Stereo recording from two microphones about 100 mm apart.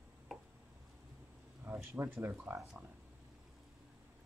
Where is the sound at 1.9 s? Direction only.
20° right (ahead or behind).